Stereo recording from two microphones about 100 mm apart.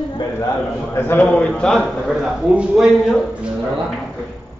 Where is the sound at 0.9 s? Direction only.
20° left (ahead or behind).